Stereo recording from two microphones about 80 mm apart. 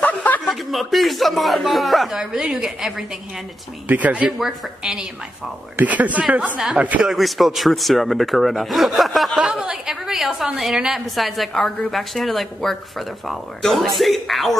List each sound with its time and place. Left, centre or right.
0.0 s a sound: left
0.5 s a man's voice: centre
3.8 s a woman's voice: centre
4.4 s a man's voice: centre
5.8 s a woman's voice: centre
7.1 s a man's voice: centre
9.4 s a woman's voice: centre